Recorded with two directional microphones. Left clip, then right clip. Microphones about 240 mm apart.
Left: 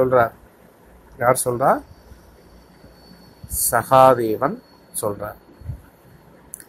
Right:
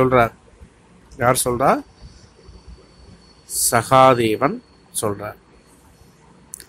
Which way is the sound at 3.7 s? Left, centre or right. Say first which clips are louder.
Even; right.